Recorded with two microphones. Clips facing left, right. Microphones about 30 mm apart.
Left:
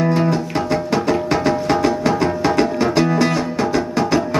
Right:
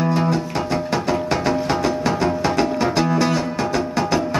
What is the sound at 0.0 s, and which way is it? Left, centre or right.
Music, centre.